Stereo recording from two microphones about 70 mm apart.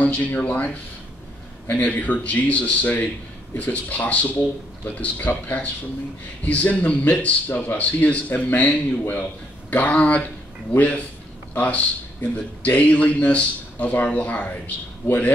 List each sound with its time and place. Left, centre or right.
0.0 s a man's voice: centre
1.7 s a man's voice: left